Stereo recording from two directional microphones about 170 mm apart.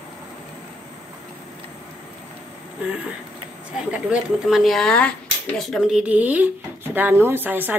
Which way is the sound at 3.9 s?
5° right (ahead or behind).